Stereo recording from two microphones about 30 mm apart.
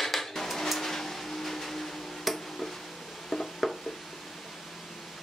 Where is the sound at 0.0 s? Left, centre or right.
Centre.